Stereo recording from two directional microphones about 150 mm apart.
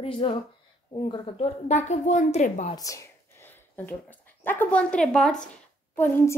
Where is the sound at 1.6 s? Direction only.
50° left (ahead or behind).